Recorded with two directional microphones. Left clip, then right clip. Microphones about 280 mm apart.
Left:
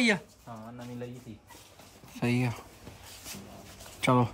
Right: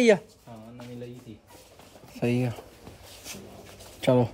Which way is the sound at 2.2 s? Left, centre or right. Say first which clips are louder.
Right 3 dB; left.